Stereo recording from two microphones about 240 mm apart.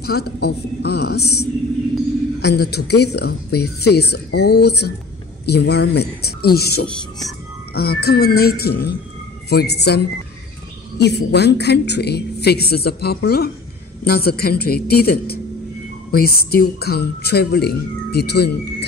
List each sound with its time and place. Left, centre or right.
0.0 s a woman's voice: left
6.9 s speech: centre
7.7 s a woman's voice: left